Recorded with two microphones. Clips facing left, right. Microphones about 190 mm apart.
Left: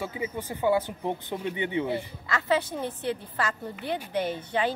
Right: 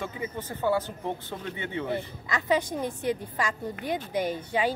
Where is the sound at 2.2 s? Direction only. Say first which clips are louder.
Even; 15° right (ahead or behind).